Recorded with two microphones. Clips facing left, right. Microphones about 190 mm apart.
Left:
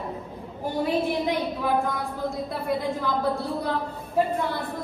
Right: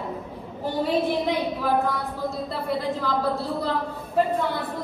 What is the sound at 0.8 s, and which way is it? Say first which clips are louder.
A woman's voice: right 1 dB; 15° left (ahead or behind).